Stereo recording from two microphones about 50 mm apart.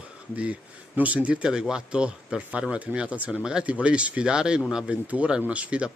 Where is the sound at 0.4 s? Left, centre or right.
Right.